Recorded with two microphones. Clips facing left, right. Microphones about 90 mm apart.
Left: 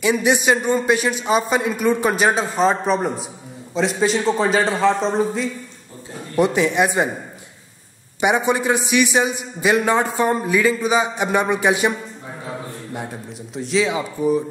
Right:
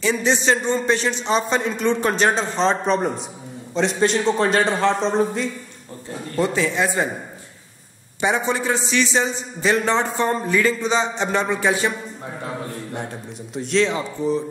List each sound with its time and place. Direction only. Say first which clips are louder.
0.0 s a man's voice: left 2 dB; 15° left (ahead or behind)
6.3 s a man's voice: left 4 dB; 15° left (ahead or behind)
8.2 s a man's voice: left 3 dB; 15° left (ahead or behind)
13.6 s a man's voice: even; 5° left (ahead or behind)